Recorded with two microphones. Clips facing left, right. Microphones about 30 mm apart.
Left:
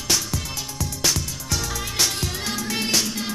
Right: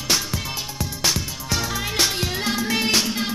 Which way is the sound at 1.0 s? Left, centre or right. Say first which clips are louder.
Right 1 dB; centre.